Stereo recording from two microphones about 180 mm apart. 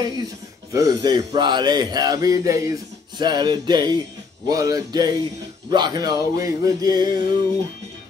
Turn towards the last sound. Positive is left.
turn(degrees=-25)  # may be behind; listen again after turning